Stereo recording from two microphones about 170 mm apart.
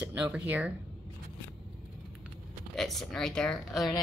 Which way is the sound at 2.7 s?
Centre (ahead or behind).